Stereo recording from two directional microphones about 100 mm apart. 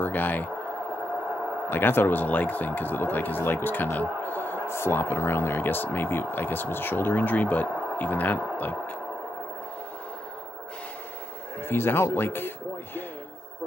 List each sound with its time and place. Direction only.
0.0 s speech: 20° left (ahead or behind)
1.7 s speech: 20° left (ahead or behind)
11.6 s speech: 20° left (ahead or behind)